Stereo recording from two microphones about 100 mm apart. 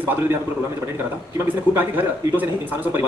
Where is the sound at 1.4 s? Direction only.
20° right (ahead or behind).